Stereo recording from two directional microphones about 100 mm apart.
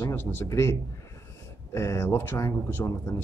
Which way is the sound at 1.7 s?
30° left (ahead or behind).